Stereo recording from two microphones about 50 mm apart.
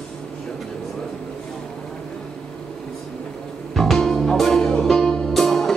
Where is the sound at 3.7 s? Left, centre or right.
Centre.